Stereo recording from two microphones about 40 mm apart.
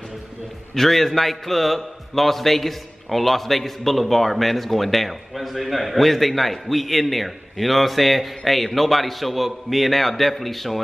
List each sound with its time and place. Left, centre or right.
0.7 s a man's voice: centre